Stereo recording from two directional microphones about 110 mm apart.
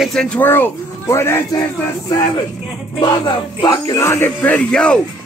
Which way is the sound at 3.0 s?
40° left (ahead or behind).